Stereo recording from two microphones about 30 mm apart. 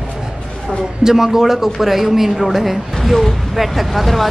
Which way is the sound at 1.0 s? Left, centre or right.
Centre.